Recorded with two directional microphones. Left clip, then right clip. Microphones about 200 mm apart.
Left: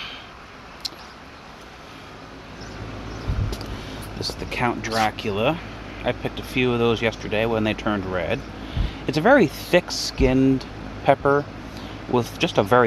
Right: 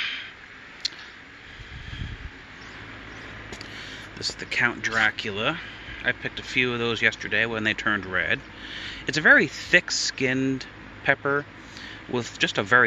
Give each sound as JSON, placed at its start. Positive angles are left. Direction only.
{"t": 3.7, "sound": "speech", "side_deg": 5}